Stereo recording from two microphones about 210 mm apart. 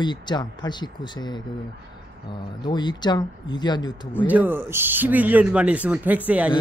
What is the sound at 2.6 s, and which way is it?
Speech, 20° left (ahead or behind).